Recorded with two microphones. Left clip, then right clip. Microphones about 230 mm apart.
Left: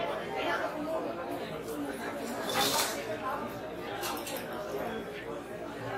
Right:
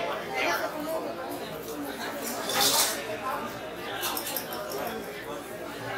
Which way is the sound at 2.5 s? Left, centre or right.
Centre.